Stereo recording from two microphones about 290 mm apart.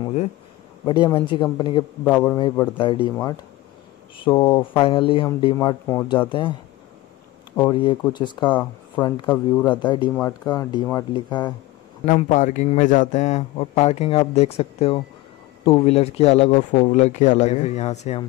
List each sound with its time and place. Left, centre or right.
0.8 s speech: centre
7.7 s speech: centre
12.1 s a man's voice: left